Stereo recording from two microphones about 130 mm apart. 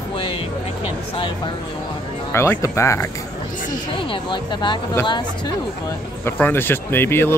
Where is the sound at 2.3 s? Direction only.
20° left (ahead or behind).